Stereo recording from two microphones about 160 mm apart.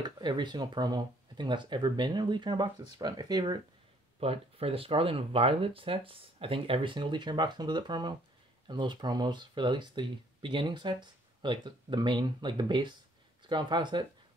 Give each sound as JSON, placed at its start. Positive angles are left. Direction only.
{"t": 0.0, "sound": "speech", "side_deg": -30}
{"t": 4.2, "sound": "speech", "side_deg": -35}